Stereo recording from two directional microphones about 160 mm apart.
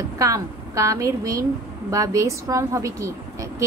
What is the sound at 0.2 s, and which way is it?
A woman's voice, 20° right (ahead or behind).